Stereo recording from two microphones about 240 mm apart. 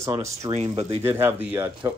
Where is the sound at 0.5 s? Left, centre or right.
Right.